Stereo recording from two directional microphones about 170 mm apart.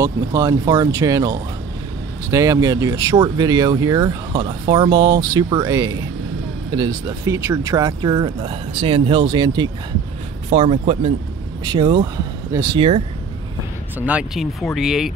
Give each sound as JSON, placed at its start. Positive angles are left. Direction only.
{"t": 0.0, "sound": "speech", "side_deg": -20}
{"t": 13.9, "sound": "speech", "side_deg": -10}